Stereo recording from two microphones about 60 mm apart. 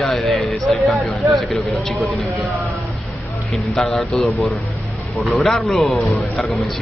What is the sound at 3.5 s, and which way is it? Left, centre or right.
Speech, centre.